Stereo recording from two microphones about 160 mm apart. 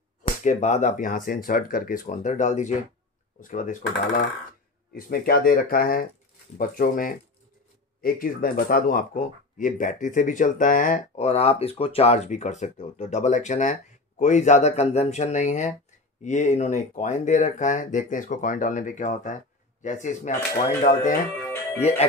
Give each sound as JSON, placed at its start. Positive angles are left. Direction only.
{"t": 0.4, "sound": "speech", "side_deg": 50}
{"t": 4.9, "sound": "speech", "side_deg": 65}
{"t": 21.4, "sound": "music", "side_deg": 15}